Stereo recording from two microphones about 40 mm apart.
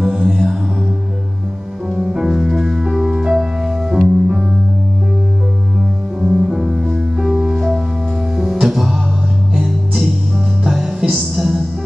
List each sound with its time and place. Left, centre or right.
0.0 s music: right
1.9 s music: centre
6.2 s music: centre